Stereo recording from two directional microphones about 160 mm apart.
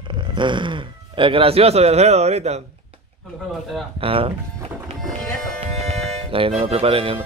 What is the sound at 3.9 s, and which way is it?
Speech, 35° right (ahead or behind).